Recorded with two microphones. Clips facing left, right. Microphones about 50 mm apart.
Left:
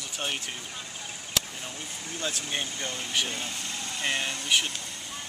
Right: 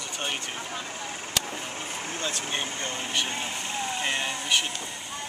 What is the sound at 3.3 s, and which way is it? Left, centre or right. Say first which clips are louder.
Vehicle: right 3 dB; right.